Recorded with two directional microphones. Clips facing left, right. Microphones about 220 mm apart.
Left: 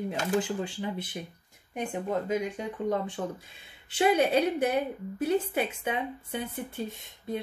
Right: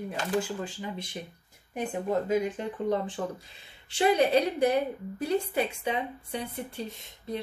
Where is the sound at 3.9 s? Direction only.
Centre (ahead or behind).